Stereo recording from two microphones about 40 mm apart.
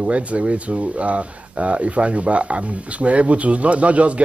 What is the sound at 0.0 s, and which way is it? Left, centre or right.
Speech, right.